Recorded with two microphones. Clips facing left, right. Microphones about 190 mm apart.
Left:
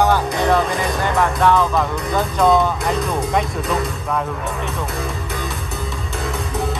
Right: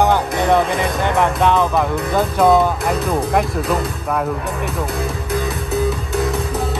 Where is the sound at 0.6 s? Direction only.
Centre (ahead or behind).